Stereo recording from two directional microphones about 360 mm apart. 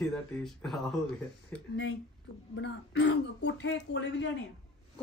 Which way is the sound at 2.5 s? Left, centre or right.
Left.